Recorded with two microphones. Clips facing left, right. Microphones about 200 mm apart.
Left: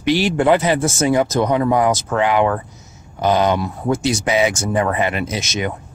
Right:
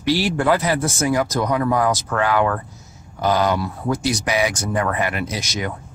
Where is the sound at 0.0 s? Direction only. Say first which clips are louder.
Left 3 dB; 20° left (ahead or behind).